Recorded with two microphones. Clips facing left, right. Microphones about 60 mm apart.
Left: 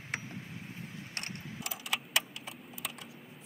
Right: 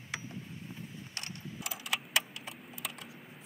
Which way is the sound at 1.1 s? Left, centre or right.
Left.